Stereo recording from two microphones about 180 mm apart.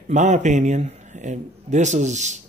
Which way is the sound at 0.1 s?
40° right (ahead or behind).